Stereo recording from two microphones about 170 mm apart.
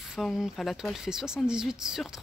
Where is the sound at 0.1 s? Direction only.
Centre (ahead or behind).